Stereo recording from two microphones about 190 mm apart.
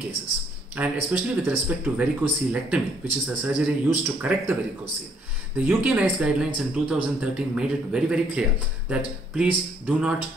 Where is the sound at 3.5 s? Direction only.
5° right (ahead or behind).